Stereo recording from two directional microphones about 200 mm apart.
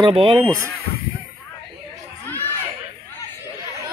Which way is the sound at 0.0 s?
25° right (ahead or behind).